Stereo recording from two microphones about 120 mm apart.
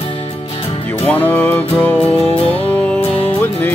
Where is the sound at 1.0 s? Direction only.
15° left (ahead or behind).